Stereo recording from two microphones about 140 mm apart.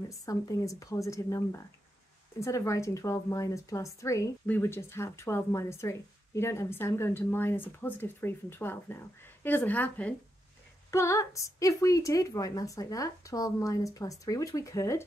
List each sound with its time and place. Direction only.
0.2 s a woman's voice: 25° left (ahead or behind)
10.9 s a woman's voice: 20° left (ahead or behind)